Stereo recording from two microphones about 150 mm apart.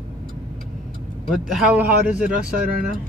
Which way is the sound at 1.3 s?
5° right (ahead or behind).